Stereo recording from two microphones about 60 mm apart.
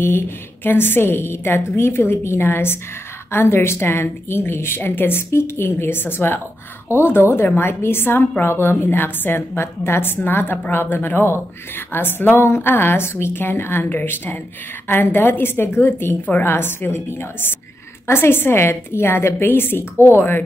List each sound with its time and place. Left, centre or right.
0.7 s a woman's voice: left